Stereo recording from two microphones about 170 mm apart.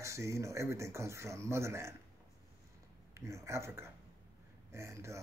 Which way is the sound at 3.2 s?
15° right (ahead or behind).